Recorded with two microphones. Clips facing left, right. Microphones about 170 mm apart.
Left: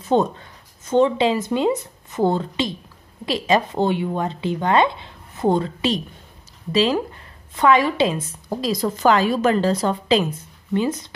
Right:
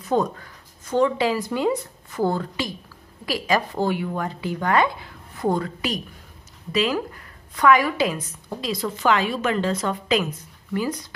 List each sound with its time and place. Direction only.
0.0 s a woman's voice: 25° left (ahead or behind)